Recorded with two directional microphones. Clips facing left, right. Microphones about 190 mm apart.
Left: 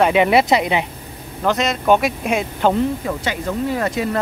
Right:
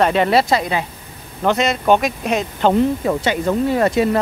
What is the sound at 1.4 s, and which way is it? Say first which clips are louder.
Speech: right 1 dB; centre (ahead or behind).